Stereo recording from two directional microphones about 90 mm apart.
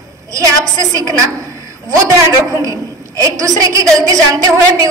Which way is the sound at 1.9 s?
35° right (ahead or behind).